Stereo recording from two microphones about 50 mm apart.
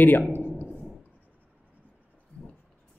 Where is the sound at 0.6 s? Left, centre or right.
Right.